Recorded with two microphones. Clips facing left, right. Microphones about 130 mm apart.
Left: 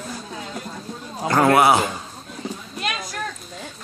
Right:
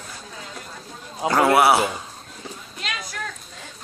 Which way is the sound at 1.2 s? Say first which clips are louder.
Left 1 dB; 10° right (ahead or behind).